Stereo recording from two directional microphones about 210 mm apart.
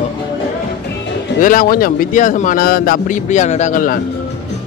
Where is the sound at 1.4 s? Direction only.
40° left (ahead or behind).